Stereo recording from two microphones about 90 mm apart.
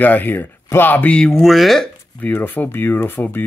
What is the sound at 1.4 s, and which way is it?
Speech, centre (ahead or behind).